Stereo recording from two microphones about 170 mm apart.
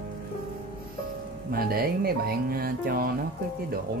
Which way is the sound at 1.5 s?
60° right (ahead or behind).